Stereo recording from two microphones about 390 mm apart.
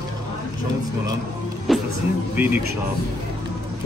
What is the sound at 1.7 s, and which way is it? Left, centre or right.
Music, centre.